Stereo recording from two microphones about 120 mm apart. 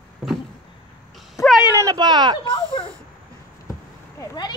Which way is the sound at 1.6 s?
20° right (ahead or behind).